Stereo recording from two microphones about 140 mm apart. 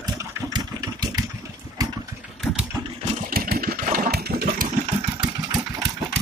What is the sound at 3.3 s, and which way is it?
Engine, 90° right.